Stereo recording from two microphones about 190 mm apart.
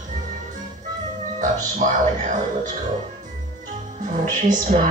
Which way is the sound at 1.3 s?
40° right (ahead or behind).